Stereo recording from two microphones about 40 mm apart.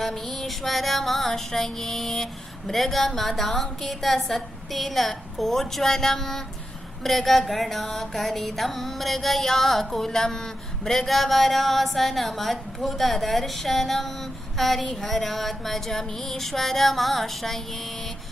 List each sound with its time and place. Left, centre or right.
0.0 s a woman's voice: centre
7.0 s music: centre